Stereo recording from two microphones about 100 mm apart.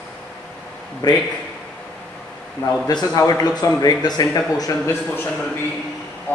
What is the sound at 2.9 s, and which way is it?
A man's voice, 40° left (ahead or behind).